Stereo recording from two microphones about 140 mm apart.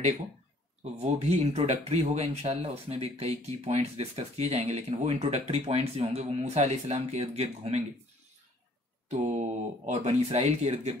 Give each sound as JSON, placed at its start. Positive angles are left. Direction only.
{"t": 0.9, "sound": "speech", "side_deg": -50}
{"t": 9.1, "sound": "speech", "side_deg": -50}